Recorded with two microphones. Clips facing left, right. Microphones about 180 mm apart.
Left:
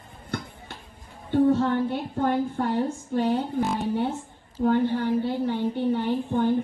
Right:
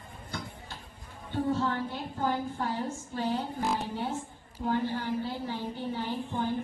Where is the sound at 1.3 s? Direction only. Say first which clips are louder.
Left 9 dB; 65° left (ahead or behind).